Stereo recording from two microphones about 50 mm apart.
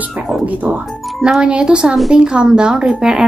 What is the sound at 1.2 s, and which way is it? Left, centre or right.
Speech, centre.